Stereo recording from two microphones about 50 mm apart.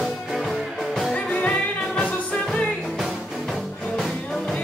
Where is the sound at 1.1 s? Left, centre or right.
Left.